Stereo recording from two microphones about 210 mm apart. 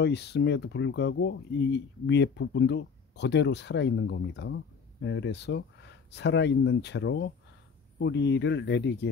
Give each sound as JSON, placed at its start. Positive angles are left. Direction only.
{"t": 0.0, "sound": "speech", "side_deg": 55}